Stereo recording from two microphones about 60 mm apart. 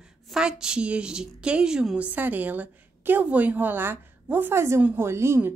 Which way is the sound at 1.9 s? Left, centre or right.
Right.